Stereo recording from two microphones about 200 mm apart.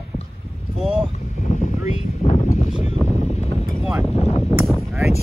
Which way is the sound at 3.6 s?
Centre (ahead or behind).